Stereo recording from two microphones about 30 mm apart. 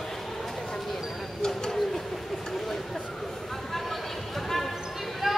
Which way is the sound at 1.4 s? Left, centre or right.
Centre.